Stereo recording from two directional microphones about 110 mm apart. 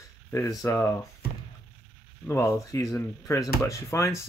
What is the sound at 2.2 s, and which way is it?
Speech, 25° left (ahead or behind).